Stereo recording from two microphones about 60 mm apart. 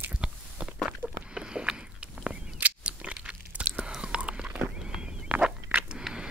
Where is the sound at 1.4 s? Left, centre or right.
Centre.